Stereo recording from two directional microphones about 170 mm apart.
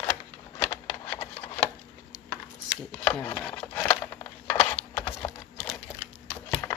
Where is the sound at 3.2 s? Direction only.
5° left (ahead or behind).